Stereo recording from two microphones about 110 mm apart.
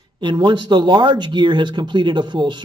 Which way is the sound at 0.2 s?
45° right (ahead or behind).